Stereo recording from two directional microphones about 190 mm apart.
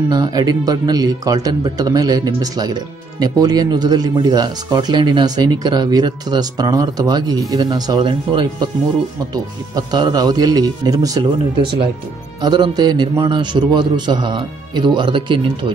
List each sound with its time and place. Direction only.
0.1 s speech: 20° right (ahead or behind)
12.4 s speech: 20° right (ahead or behind)